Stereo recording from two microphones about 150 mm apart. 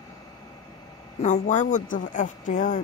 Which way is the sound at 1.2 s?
55° left (ahead or behind).